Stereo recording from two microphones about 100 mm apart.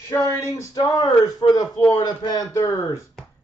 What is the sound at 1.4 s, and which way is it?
A man's voice, 55° left (ahead or behind).